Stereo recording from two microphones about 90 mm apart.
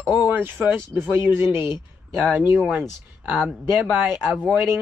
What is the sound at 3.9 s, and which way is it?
Speech, 20° right (ahead or behind).